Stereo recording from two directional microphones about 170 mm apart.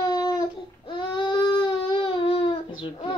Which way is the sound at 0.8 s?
30° left (ahead or behind).